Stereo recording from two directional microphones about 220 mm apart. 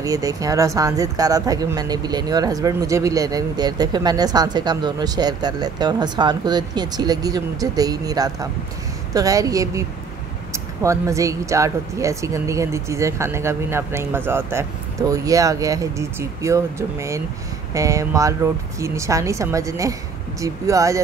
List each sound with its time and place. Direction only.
0.0 s speech: 15° right (ahead or behind)